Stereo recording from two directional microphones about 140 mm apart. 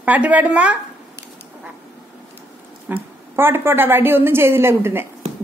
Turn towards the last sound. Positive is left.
turn(degrees=-15)  # may be behind; listen again after turning